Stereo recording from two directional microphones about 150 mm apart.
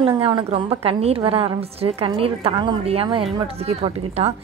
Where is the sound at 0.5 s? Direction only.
40° right (ahead or behind).